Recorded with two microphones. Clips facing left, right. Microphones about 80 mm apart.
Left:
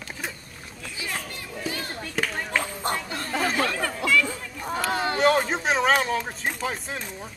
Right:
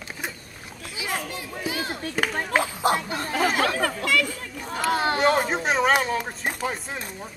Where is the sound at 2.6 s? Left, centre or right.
Centre.